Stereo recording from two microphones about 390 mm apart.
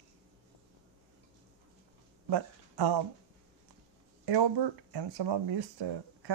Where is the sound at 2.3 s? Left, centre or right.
Right.